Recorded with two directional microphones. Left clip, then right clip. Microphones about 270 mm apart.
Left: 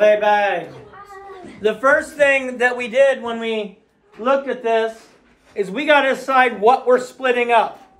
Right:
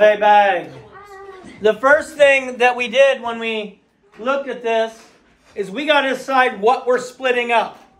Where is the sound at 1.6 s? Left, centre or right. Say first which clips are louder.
Right 2 dB; right; by 3.6 s centre.